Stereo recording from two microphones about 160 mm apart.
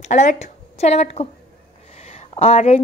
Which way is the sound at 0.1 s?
50° left (ahead or behind).